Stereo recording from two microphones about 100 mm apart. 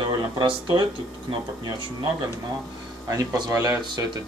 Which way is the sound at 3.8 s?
50° right (ahead or behind).